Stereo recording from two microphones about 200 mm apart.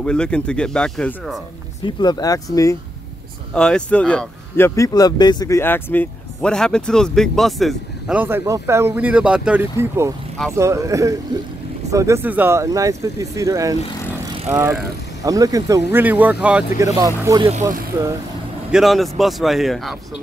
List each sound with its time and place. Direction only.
0.0 s speech: 5° left (ahead or behind)
1.9 s speech: 20° left (ahead or behind)
3.5 s speech: 5° left (ahead or behind); by 18.1 s 15° right (ahead or behind)
18.7 s speech: centre (ahead or behind)